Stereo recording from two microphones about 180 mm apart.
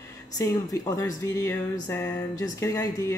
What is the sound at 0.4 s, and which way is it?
Speech, 20° left (ahead or behind).